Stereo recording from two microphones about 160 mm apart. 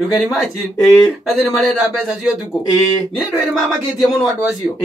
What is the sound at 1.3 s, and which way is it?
Speech, 5° left (ahead or behind).